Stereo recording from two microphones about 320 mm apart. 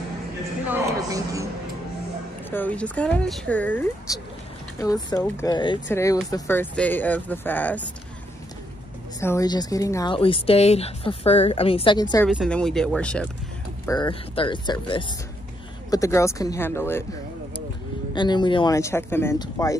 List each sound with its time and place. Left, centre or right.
0.7 s a sound: centre
2.5 s a woman's voice: centre
9.2 s a woman's voice: centre
12.3 s speech: centre
13.8 s a woman's voice: centre
18.1 s a woman's voice: centre